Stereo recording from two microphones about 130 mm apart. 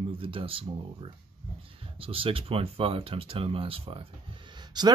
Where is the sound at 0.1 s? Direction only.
45° right (ahead or behind).